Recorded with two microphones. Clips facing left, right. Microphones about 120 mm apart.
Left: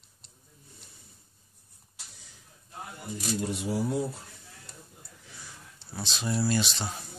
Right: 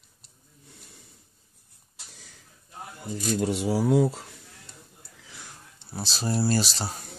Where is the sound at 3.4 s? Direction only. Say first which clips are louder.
Right 5 dB; 80° right.